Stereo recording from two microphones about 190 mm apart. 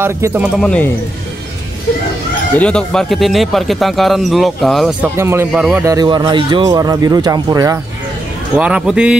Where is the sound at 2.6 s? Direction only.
5° left (ahead or behind).